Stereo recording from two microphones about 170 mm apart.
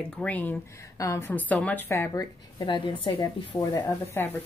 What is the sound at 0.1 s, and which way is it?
A woman's voice, 5° left (ahead or behind).